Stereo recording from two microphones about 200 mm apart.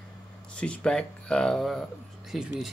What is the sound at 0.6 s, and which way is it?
Speech, 5° left (ahead or behind).